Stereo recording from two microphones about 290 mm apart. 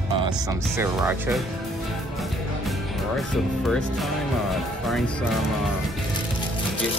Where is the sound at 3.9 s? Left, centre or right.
Centre.